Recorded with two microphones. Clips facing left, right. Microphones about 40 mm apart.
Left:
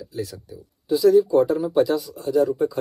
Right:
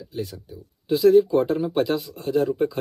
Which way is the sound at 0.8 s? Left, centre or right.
Right.